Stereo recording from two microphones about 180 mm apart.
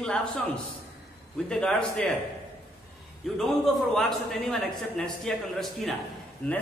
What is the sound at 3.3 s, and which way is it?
A man's voice, centre (ahead or behind).